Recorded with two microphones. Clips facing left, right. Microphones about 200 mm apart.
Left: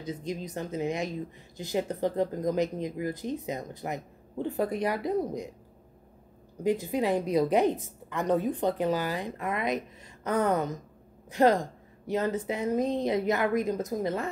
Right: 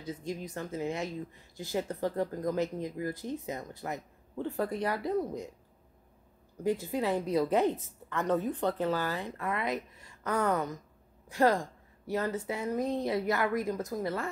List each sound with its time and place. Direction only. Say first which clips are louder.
0.0 s a woman's voice: left 3 dB; 20° left (ahead or behind)
6.6 s a woman's voice: left 3 dB; 15° left (ahead or behind)